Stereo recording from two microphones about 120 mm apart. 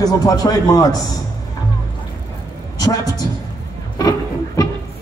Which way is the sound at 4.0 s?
30° left (ahead or behind).